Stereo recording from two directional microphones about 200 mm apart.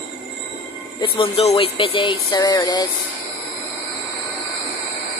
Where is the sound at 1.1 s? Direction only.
25° left (ahead or behind).